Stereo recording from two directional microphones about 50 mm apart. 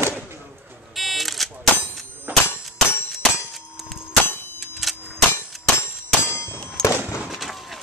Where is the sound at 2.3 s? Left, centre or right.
Right.